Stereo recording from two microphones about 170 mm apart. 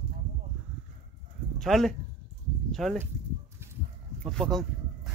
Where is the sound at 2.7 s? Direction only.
Centre (ahead or behind).